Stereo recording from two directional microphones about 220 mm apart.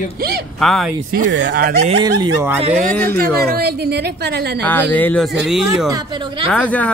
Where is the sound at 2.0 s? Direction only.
15° right (ahead or behind).